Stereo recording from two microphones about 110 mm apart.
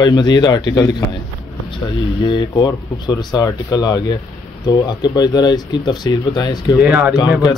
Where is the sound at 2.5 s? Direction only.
40° left (ahead or behind).